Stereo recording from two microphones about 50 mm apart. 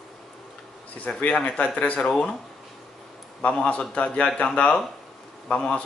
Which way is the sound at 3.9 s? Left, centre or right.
Left.